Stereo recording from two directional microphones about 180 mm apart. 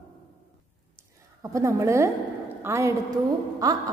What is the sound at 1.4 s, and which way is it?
A woman's voice, 15° right (ahead or behind).